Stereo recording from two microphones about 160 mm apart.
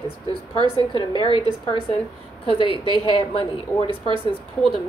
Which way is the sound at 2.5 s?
35° left (ahead or behind).